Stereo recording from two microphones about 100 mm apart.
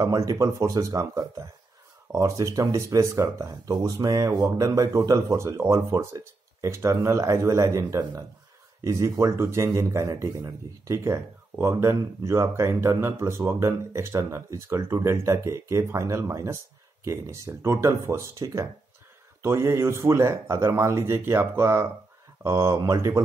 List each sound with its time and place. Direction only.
0.0 s speech: 35° right (ahead or behind)